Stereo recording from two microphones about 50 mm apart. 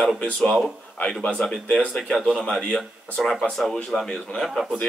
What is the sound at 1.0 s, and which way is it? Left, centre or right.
Speech, left.